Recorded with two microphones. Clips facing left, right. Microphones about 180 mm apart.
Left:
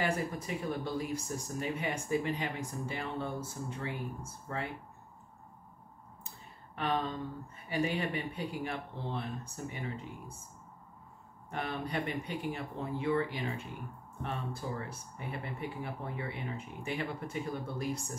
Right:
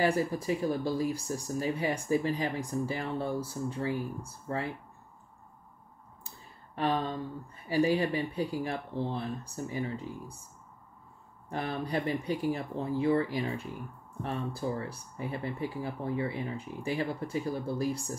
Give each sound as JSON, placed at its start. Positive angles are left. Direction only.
{"t": 0.0, "sound": "speech", "side_deg": -35}
{"t": 6.7, "sound": "a sound", "side_deg": -35}
{"t": 7.6, "sound": "speech", "side_deg": -35}
{"t": 11.4, "sound": "speech", "side_deg": -35}